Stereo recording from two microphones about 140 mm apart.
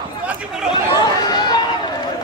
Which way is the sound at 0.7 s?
30° left (ahead or behind).